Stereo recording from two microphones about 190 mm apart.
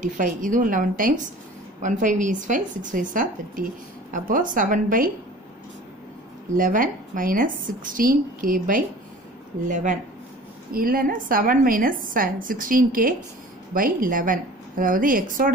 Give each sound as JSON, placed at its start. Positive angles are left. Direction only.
{"t": 0.0, "sound": "a woman's voice", "side_deg": -45}
{"t": 6.5, "sound": "a woman's voice", "side_deg": -45}
{"t": 10.7, "sound": "a woman's voice", "side_deg": -50}